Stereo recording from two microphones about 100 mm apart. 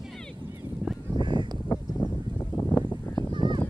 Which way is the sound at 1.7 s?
45° left (ahead or behind).